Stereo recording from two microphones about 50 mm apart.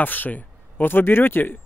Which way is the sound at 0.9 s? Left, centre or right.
Left.